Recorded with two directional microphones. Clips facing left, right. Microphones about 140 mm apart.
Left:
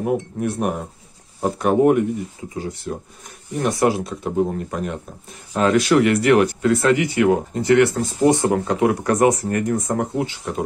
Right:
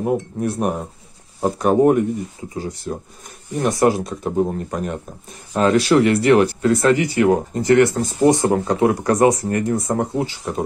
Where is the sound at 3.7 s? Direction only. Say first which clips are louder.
Right 3 dB; 40° right (ahead or behind).